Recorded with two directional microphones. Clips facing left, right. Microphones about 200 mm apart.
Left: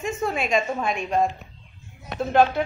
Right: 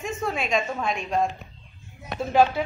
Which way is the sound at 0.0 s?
5° left (ahead or behind).